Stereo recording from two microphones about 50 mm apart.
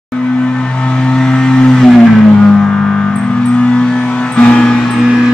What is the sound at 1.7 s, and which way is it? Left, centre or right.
Music, centre.